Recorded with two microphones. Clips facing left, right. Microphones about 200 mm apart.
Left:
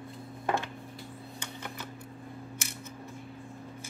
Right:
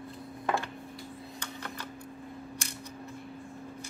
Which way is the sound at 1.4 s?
10° left (ahead or behind).